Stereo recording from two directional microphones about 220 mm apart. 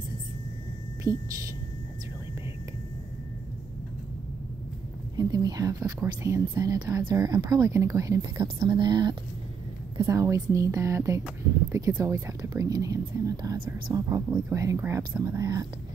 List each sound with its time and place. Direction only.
1.1 s speech: 15° right (ahead or behind)
5.1 s speech: 15° right (ahead or behind)